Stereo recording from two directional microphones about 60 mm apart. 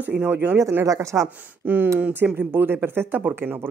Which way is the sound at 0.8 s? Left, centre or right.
Right.